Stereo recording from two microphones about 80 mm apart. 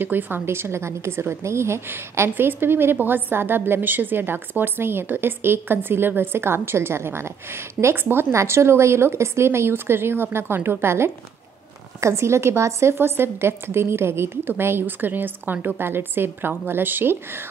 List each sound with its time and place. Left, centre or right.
0.0 s a woman's voice: right